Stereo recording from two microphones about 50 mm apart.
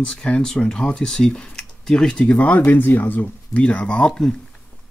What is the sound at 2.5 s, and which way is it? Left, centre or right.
Speech, left.